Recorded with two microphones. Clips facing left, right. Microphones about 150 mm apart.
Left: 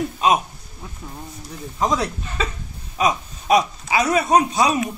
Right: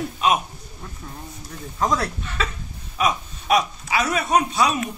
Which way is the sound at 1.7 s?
20° left (ahead or behind).